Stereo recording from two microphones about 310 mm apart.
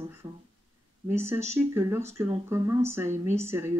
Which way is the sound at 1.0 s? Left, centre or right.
Centre.